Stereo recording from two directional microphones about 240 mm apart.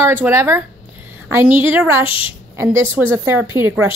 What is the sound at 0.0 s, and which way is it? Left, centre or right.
A woman's voice, centre.